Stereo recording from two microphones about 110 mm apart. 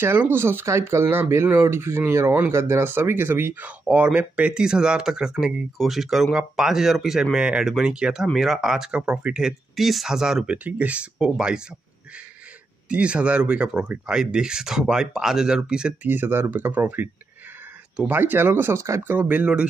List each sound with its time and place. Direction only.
0.0 s speech: 20° right (ahead or behind)
12.8 s speech: 10° right (ahead or behind)
16.1 s speech: 20° right (ahead or behind)